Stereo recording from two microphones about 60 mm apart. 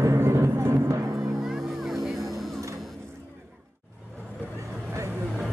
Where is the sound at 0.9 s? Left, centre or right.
Right.